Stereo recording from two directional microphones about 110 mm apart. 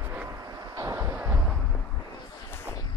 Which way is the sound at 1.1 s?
10° right (ahead or behind).